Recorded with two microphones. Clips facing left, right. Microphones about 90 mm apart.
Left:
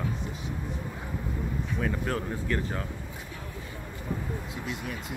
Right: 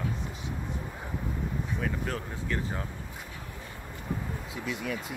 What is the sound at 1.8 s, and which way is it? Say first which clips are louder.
Speech: left 5 dB; centre (ahead or behind).